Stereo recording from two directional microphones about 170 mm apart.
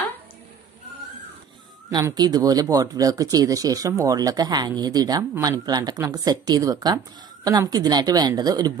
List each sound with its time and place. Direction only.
1.9 s speech: 25° right (ahead or behind)